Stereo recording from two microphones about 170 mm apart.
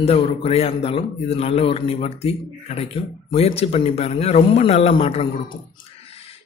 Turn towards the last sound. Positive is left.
turn(degrees=35)  # may be behind; listen again after turning